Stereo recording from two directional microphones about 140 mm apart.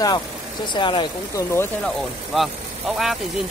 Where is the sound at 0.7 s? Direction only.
35° left (ahead or behind).